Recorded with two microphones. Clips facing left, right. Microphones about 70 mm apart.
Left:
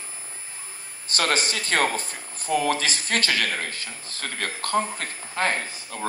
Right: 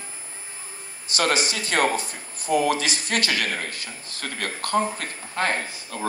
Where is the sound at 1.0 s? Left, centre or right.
Left.